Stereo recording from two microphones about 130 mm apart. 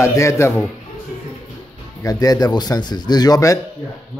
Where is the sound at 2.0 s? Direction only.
30° left (ahead or behind).